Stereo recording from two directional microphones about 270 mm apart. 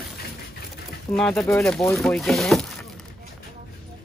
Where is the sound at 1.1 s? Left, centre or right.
Centre.